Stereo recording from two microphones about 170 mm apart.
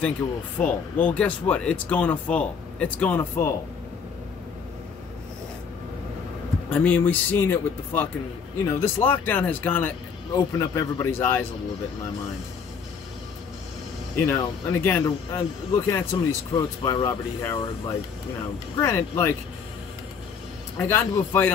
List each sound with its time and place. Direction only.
0.6 s speech: 10° left (ahead or behind)
6.7 s speech: 10° left (ahead or behind)
14.2 s speech: 10° left (ahead or behind)
20.7 s speech: 15° left (ahead or behind)